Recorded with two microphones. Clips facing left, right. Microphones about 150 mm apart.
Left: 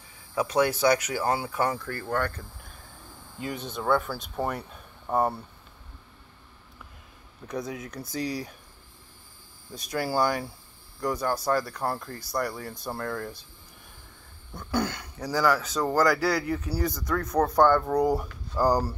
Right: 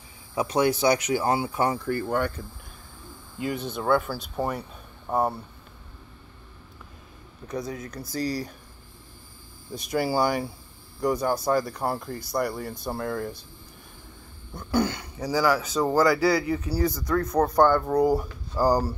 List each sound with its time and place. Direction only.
0.3 s speech: 20° right (ahead or behind); by 5.3 s centre (ahead or behind)
7.4 s speech: centre (ahead or behind)
9.8 s speech: 5° right (ahead or behind)
14.5 s speech: 5° right (ahead or behind)